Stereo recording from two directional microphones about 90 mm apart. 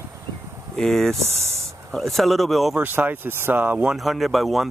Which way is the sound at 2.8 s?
20° right (ahead or behind).